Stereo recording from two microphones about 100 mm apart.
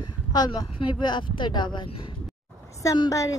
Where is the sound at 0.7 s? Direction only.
50° left (ahead or behind).